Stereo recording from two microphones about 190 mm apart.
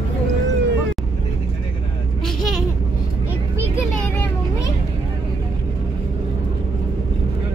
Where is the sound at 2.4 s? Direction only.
Centre (ahead or behind).